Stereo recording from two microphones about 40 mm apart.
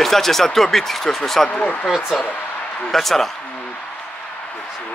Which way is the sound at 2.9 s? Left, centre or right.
Centre.